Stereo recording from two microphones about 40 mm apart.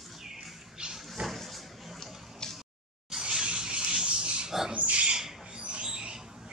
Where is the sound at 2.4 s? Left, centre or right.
Centre.